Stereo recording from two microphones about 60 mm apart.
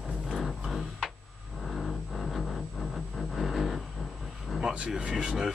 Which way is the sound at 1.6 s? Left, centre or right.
Centre.